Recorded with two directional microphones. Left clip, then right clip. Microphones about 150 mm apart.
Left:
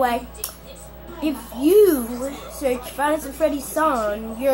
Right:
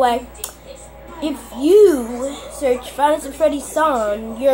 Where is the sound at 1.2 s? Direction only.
25° right (ahead or behind).